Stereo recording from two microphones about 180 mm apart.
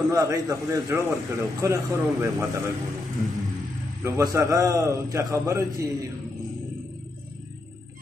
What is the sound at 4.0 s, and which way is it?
A man's voice, 20° right (ahead or behind).